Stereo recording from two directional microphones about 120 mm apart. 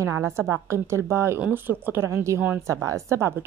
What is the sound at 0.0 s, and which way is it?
Speech, 25° right (ahead or behind).